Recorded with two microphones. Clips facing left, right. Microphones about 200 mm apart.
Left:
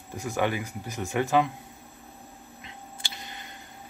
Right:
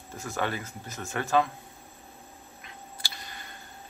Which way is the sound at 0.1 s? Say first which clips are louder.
Left 4 dB; 15° left (ahead or behind).